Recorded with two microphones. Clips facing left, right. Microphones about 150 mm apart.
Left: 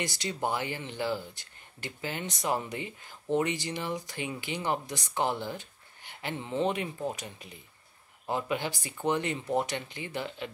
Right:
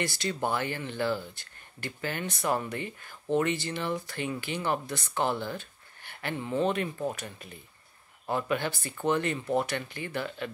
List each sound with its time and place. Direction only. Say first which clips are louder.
0.0 s speech: right 2 dB; 20° left (ahead or behind)